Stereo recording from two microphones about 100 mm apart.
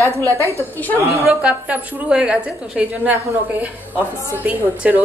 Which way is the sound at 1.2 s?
10° right (ahead or behind).